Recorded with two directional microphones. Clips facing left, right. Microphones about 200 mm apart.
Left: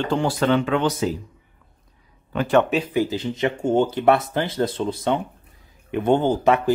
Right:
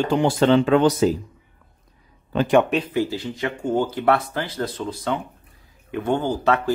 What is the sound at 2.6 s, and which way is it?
Speech, 5° left (ahead or behind).